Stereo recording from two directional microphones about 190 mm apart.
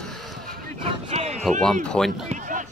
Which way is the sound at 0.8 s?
30° right (ahead or behind).